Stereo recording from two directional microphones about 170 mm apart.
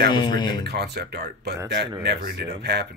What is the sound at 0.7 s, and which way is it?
Speech, 70° right (ahead or behind).